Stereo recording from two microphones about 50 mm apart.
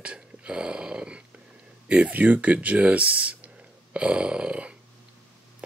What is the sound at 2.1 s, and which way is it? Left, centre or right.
Speech, right.